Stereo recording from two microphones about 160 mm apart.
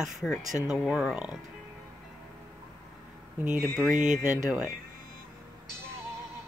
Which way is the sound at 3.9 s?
50° right (ahead or behind).